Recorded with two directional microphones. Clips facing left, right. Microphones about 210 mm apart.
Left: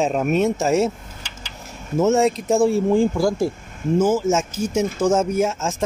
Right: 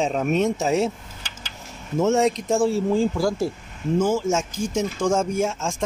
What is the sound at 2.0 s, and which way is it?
Speech, centre (ahead or behind).